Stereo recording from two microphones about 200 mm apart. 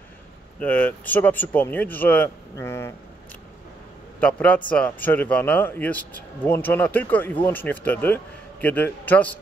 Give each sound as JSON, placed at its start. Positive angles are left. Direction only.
{"t": 0.6, "sound": "speech", "side_deg": 10}
{"t": 4.2, "sound": "speech", "side_deg": 5}